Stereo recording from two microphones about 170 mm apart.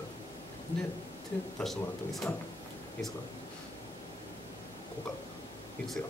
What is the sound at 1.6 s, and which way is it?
Speech, centre (ahead or behind).